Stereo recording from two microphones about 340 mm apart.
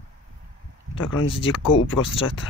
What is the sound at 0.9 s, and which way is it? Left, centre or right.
Speech, left.